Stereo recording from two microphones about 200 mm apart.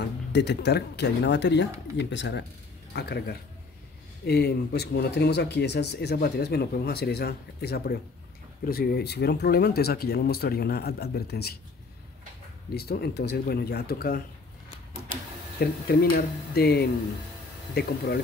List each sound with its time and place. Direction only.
0.3 s speech: 60° left (ahead or behind)
12.7 s speech: 50° left (ahead or behind)
15.6 s speech: 50° left (ahead or behind)